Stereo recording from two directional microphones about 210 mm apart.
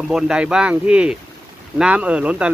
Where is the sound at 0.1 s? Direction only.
5° right (ahead or behind).